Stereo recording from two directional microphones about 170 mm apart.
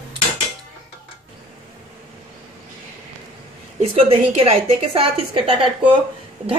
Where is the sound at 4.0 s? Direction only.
35° right (ahead or behind).